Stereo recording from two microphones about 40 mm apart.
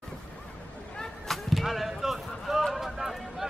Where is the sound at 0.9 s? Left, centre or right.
Centre.